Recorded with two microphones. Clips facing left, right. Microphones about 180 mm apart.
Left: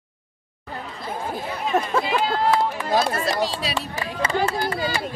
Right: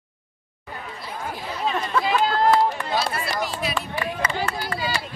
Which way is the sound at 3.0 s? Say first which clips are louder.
Left 4 dB; 45° left (ahead or behind).